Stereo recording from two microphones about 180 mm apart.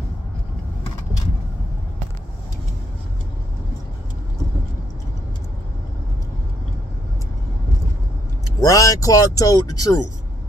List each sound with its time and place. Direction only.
8.5 s speech: 20° left (ahead or behind)